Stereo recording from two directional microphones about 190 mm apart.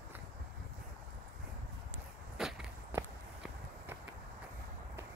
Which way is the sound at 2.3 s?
5° right (ahead or behind).